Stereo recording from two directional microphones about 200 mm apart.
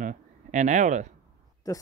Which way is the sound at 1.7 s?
15° left (ahead or behind).